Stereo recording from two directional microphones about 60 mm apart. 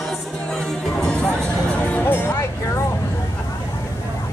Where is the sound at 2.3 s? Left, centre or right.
Left.